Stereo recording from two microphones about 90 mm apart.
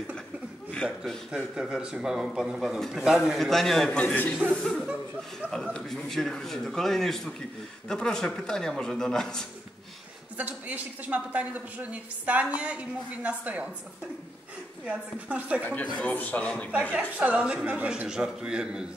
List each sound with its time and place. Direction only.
1.3 s speech: 5° right (ahead or behind)
3.3 s a man's voice: 5° left (ahead or behind)
4.0 s a man's voice: 15° left (ahead or behind)
4.6 s a man's voice: centre (ahead or behind)
10.3 s speech: 20° right (ahead or behind)
14.9 s speech: 15° right (ahead or behind)
15.6 s a man's voice: 20° left (ahead or behind)
17.2 s speech: 15° right (ahead or behind)